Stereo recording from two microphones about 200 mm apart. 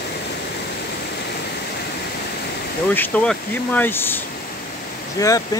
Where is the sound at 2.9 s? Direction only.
10° left (ahead or behind).